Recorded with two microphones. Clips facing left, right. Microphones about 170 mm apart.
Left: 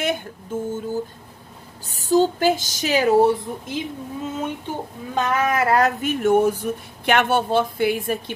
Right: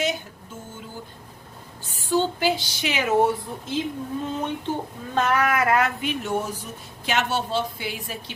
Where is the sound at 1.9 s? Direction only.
40° left (ahead or behind).